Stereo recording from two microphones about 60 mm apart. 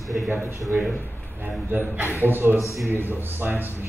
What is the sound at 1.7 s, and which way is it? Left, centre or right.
Speech, right.